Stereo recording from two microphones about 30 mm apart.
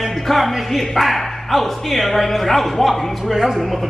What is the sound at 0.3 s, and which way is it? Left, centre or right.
Speech, centre.